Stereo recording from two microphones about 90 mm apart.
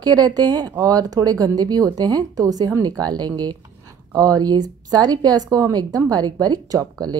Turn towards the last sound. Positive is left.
turn(degrees=-45)  # may be behind; listen again after turning